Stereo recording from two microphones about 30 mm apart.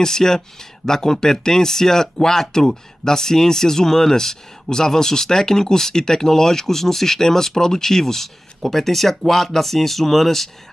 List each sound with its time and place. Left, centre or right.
0.0 s speech: centre